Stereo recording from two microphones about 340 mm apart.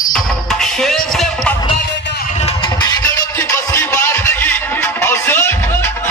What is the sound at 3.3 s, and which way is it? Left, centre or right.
Music, centre.